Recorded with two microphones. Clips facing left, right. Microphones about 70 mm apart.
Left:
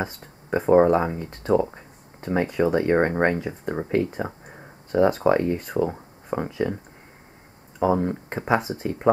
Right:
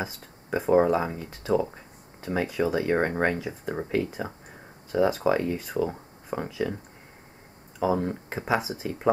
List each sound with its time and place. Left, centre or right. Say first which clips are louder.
0.0 s speech: left 4 dB; centre
1.7 s a sound: left 2 dB; centre
2.2 s speech: left 4 dB; centre
3.7 s a sound: left 4 dB; centre
5.0 s speech: left 4 dB; centre
7.8 s speech: left 4 dB; centre